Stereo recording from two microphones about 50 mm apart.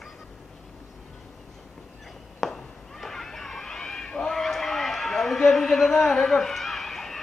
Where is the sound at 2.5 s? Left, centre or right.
Centre.